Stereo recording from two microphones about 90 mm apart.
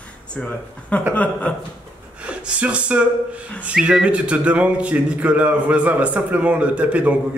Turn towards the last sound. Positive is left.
turn(degrees=-15)  # may be behind; listen again after turning